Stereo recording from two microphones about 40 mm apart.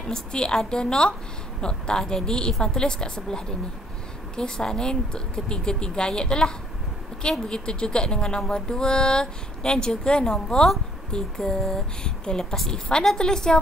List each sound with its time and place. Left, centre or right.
0.0 s a woman's voice: left